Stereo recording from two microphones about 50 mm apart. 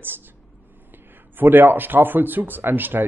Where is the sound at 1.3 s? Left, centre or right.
Right.